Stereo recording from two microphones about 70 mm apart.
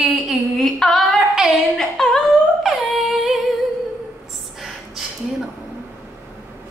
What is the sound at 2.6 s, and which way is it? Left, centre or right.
Music, centre.